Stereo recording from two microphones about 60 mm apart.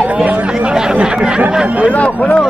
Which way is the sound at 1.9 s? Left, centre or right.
Left.